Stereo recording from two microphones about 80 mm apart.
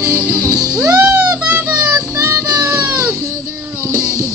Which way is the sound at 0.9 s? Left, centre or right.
Centre.